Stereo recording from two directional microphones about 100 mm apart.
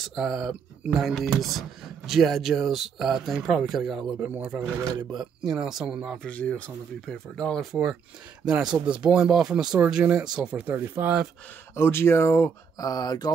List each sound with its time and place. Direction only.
0.0 s speech: centre (ahead or behind)
6.2 s speech: 10° left (ahead or behind); by 11.2 s 20° right (ahead or behind)
11.7 s speech: 25° left (ahead or behind)
12.7 s speech: 40° left (ahead or behind)